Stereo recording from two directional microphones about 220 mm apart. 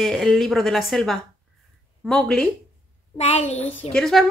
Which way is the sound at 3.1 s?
30° left (ahead or behind).